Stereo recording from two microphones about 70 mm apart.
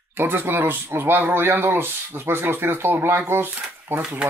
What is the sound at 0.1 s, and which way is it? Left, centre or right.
Speech, right.